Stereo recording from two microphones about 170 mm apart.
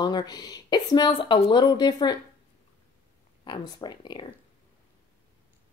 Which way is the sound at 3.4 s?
25° left (ahead or behind).